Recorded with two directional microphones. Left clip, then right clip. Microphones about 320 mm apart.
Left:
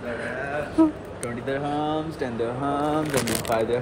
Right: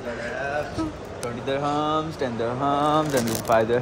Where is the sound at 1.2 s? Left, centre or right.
Centre.